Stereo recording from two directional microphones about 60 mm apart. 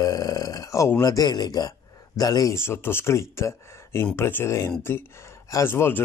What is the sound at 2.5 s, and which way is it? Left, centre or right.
Speech, left.